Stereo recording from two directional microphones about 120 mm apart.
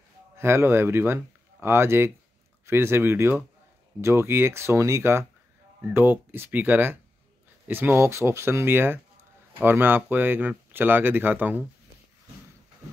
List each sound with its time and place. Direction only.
0.4 s speech: 20° right (ahead or behind)